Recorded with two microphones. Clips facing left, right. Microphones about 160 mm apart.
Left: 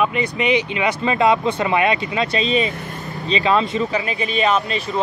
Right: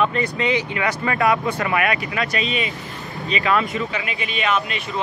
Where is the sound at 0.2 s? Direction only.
20° left (ahead or behind).